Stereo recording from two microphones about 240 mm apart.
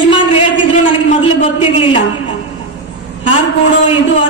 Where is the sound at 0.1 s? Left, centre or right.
Left.